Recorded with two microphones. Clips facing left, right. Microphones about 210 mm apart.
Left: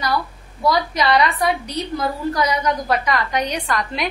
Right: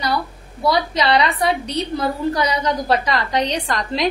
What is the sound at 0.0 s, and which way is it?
A woman's voice, 25° right (ahead or behind).